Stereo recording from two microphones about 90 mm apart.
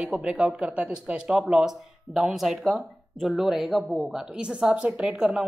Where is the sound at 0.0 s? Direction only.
10° right (ahead or behind).